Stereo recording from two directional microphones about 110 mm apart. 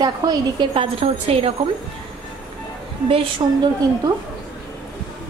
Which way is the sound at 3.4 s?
50° right (ahead or behind).